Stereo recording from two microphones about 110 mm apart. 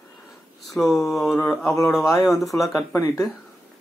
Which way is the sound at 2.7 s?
30° left (ahead or behind).